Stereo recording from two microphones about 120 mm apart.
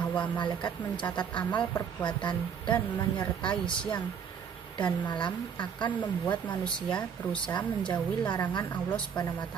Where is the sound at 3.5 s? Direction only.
40° left (ahead or behind).